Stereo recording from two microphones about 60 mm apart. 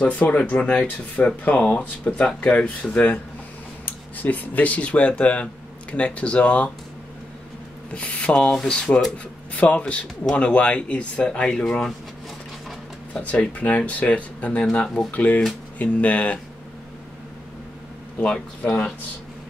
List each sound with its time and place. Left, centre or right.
0.0 s speech: left
7.9 s speech: left
13.1 s speech: left
18.2 s speech: centre